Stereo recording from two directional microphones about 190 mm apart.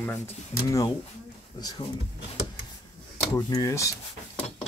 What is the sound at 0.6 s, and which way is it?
Speech, 15° left (ahead or behind).